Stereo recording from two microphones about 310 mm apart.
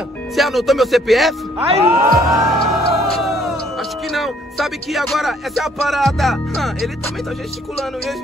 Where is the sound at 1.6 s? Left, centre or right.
Centre.